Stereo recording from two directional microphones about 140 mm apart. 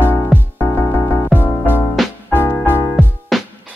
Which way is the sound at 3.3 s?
Centre (ahead or behind).